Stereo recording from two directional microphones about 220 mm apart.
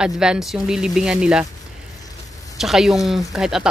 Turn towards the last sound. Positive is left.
turn(degrees=0)  # may be behind; listen again after turning